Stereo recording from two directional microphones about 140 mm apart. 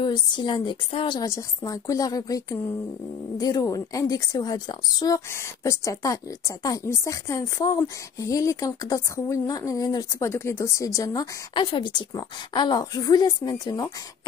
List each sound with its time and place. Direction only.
0.0 s a woman's voice: 35° left (ahead or behind)
11.5 s a woman's voice: 35° left (ahead or behind)